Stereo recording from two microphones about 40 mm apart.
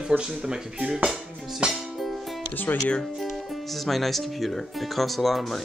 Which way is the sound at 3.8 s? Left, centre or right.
Centre.